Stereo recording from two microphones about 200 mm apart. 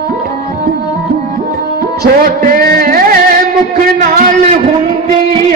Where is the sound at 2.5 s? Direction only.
45° right (ahead or behind).